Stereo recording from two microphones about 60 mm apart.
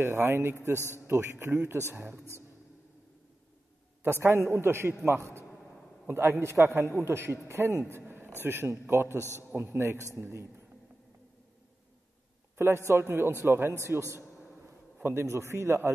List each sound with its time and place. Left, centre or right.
0.0 s a man's voice: right
0.7 s a man's voice: left
1.0 s a man's voice: right
4.0 s a man's voice: right
5.6 s a sound: centre
6.0 s a man's voice: right
8.4 s a man's voice: right
9.2 s a man's voice: left
9.6 s a man's voice: right
12.5 s a man's voice: right